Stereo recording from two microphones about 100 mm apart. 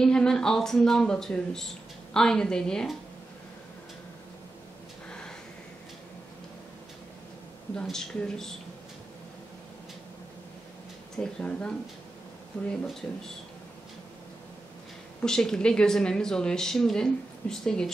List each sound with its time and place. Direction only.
0.0 s speech: 5° left (ahead or behind)
7.8 s speech: 5° left (ahead or behind)
11.1 s speech: 10° left (ahead or behind)
13.0 s speech: 20° left (ahead or behind)
15.2 s speech: 5° left (ahead or behind)